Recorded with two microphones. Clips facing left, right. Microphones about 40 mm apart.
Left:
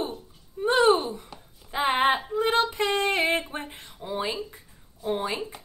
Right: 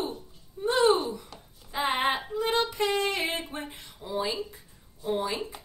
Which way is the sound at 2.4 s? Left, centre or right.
Left.